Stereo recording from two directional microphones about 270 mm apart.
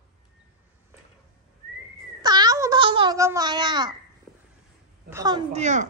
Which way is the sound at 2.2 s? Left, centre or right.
Centre.